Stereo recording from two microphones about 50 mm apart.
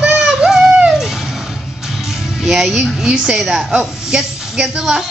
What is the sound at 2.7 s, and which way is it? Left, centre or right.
A woman's voice, centre.